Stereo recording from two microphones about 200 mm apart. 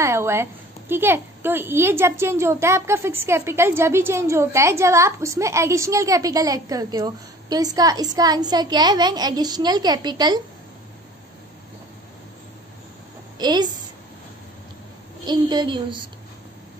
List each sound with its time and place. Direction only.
0.0 s a woman's voice: 15° right (ahead or behind)
13.4 s a woman's voice: 20° right (ahead or behind)
15.2 s a woman's voice: 20° right (ahead or behind)